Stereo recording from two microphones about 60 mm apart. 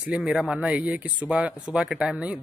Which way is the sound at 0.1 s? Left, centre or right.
Centre.